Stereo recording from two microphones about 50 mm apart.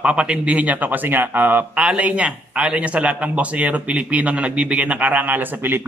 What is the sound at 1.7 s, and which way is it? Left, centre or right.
A man's voice, right.